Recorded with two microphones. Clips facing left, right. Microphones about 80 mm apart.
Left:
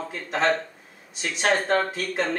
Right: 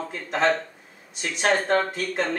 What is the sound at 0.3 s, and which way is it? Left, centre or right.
Speech, centre.